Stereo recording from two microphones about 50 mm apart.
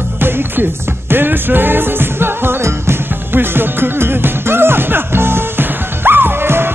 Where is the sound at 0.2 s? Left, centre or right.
Right.